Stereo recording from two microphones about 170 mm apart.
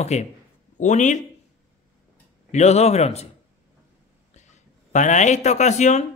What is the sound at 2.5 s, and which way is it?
Speech, 40° left (ahead or behind).